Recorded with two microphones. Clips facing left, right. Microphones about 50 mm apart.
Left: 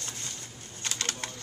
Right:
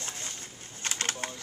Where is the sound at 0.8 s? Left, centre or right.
Right.